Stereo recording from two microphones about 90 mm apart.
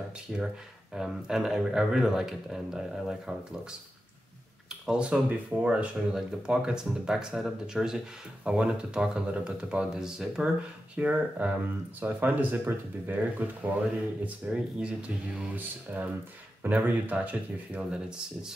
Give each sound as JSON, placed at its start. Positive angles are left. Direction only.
{"t": 0.3, "sound": "speech", "side_deg": 0}
{"t": 4.6, "sound": "speech", "side_deg": -10}